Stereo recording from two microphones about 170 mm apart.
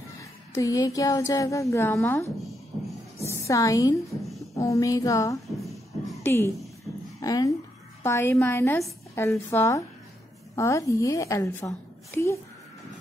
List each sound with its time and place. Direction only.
0.2 s speech: 20° left (ahead or behind)
3.2 s a sound: 15° left (ahead or behind)
4.6 s speech: 20° left (ahead or behind)
5.7 s music: centre (ahead or behind)
6.2 s a woman's voice: 15° left (ahead or behind)